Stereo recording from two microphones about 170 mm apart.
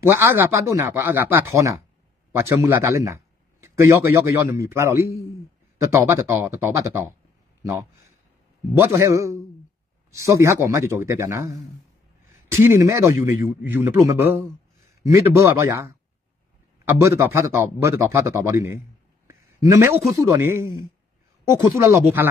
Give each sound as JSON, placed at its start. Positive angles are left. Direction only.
{"t": 0.0, "sound": "a man's voice", "side_deg": -15}
{"t": 8.7, "sound": "a man's voice", "side_deg": -15}
{"t": 19.2, "sound": "a sound", "side_deg": -15}
{"t": 20.1, "sound": "a man's voice", "side_deg": -15}